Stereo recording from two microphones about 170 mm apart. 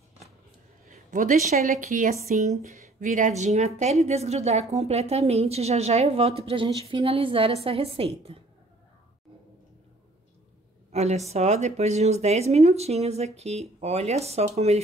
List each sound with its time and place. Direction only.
0.8 s a woman's voice: 50° right (ahead or behind)
10.9 s a woman's voice: 40° right (ahead or behind)